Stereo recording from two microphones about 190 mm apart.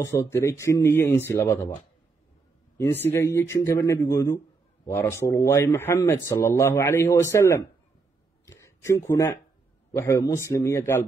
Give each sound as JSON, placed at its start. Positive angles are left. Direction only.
{"t": 0.0, "sound": "speech", "side_deg": 15}
{"t": 2.8, "sound": "speech", "side_deg": 10}